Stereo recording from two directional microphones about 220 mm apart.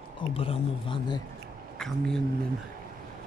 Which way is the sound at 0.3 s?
25° left (ahead or behind).